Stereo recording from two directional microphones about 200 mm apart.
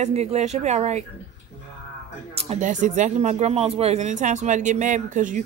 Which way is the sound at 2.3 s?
35° right (ahead or behind).